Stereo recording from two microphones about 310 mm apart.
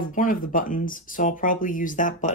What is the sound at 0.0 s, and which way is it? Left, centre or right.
Speech, left.